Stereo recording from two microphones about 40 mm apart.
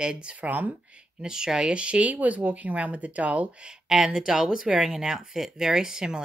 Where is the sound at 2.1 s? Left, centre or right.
Right.